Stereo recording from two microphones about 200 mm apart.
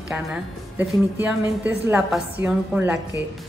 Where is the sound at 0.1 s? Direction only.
5° right (ahead or behind).